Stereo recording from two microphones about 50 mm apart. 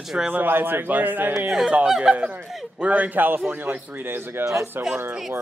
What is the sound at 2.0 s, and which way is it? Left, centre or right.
Speech, right.